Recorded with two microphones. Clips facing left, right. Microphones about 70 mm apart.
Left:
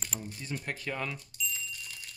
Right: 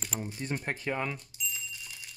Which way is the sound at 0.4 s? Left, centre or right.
Right.